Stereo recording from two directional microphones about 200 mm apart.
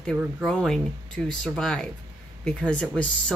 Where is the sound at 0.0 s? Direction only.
Centre (ahead or behind).